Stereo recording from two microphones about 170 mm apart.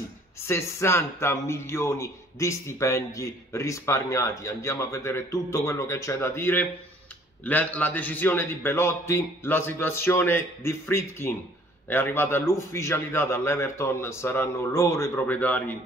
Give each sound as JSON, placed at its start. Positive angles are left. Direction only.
{"t": 0.5, "sound": "a man's voice", "side_deg": 15}